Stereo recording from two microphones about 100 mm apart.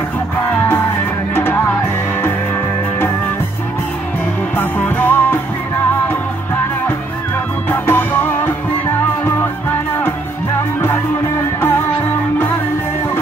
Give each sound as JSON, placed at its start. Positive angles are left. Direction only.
{"t": 1.3, "sound": "music", "side_deg": 20}
{"t": 4.6, "sound": "music", "side_deg": 20}
{"t": 7.7, "sound": "music", "side_deg": 20}